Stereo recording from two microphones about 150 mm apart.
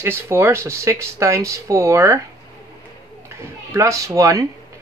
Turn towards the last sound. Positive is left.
turn(degrees=-20)  # may be behind; listen again after turning